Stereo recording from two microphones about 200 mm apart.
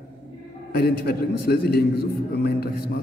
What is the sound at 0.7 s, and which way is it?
Speech, 55° left (ahead or behind).